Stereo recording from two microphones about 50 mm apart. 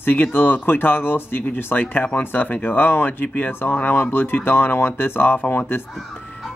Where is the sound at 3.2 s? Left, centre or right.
Left.